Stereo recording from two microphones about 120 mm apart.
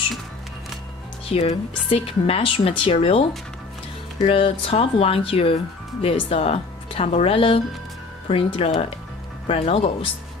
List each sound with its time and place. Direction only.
1.3 s a woman's voice: 55° left (ahead or behind)